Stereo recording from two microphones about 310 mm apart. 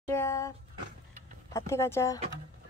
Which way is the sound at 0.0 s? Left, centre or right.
Centre.